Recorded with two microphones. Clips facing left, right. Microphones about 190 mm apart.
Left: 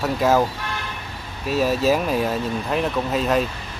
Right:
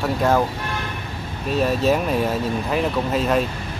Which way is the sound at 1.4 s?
Centre (ahead or behind).